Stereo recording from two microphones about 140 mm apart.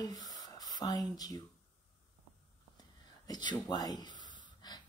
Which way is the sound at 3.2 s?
30° left (ahead or behind).